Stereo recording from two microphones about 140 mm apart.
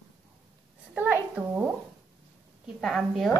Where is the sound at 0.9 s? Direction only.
15° right (ahead or behind).